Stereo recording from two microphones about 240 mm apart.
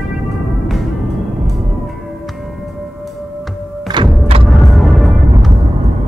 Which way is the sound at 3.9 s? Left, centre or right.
Centre.